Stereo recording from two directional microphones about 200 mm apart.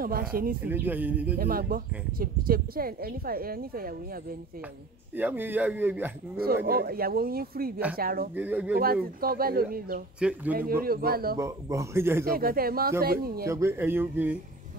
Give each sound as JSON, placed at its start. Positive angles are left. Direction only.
{"t": 0.0, "sound": "speech", "side_deg": -45}
{"t": 0.6, "sound": "speech", "side_deg": -10}
{"t": 1.4, "sound": "speech", "side_deg": -45}
{"t": 5.1, "sound": "speech", "side_deg": -10}
{"t": 6.3, "sound": "speech", "side_deg": -50}
{"t": 8.4, "sound": "speech", "side_deg": -10}
{"t": 8.7, "sound": "speech", "side_deg": -50}
{"t": 11.3, "sound": "speech", "side_deg": -15}
{"t": 12.3, "sound": "speech", "side_deg": -45}
{"t": 13.4, "sound": "speech", "side_deg": -15}